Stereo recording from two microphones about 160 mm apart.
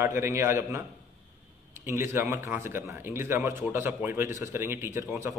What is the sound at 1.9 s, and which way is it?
Speech, 15° right (ahead or behind).